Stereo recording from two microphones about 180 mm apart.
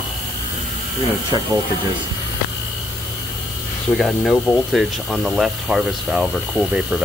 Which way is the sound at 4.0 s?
Centre (ahead or behind).